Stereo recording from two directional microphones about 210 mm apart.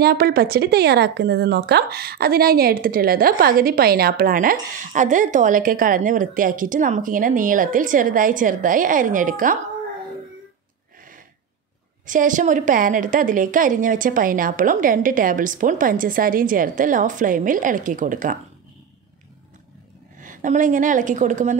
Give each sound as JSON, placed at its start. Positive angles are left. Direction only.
{"t": 0.0, "sound": "a woman's voice", "side_deg": -50}
{"t": 12.1, "sound": "a woman's voice", "side_deg": -40}
{"t": 20.2, "sound": "a woman's voice", "side_deg": -40}